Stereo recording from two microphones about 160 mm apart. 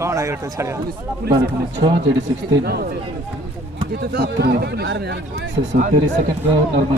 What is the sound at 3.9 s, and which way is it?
Speech, 80° right.